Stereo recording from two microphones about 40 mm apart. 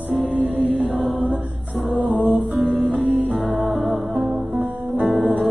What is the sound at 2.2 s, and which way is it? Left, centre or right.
Music, right.